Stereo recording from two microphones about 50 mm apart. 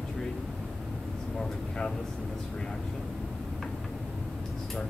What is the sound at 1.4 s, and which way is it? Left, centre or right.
Speech, centre.